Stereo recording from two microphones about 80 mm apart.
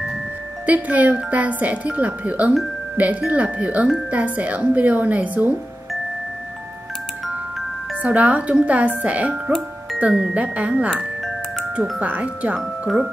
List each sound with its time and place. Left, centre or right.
0.7 s speech: centre
8.0 s speech: centre
12.5 s speech: centre